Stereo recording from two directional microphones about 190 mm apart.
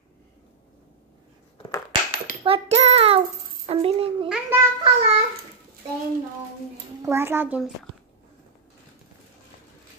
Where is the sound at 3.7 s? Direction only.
30° right (ahead or behind).